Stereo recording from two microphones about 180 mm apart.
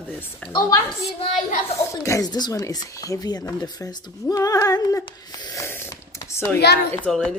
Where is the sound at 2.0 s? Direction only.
20° left (ahead or behind).